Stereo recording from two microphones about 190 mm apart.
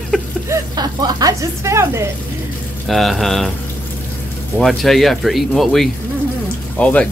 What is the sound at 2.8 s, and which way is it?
Speech, centre (ahead or behind).